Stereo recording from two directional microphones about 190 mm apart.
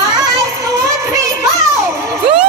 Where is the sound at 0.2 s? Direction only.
15° right (ahead or behind).